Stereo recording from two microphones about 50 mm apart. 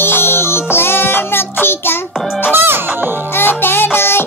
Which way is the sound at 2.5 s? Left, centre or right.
Right.